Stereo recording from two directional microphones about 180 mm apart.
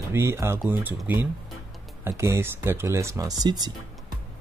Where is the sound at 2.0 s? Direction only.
15° right (ahead or behind).